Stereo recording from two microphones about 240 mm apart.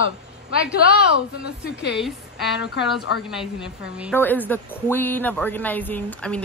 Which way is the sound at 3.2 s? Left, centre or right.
Centre.